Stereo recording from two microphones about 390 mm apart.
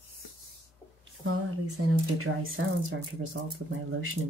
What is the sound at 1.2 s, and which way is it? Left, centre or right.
Speech, right.